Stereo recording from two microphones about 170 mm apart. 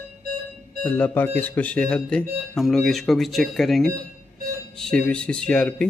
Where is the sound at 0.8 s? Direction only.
10° left (ahead or behind).